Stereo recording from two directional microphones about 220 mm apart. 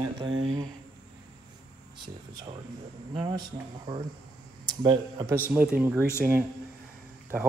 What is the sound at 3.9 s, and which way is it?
A man's voice, 20° right (ahead or behind).